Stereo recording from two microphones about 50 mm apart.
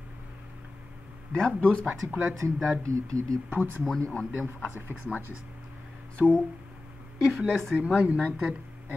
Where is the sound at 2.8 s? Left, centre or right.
Right.